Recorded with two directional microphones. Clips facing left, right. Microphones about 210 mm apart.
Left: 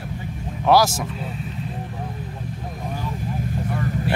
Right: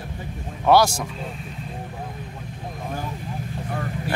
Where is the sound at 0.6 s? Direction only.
Centre (ahead or behind).